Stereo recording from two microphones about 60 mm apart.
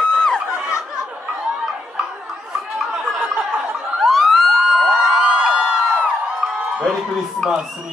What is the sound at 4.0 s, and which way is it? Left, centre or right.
Emergency vehicle, centre.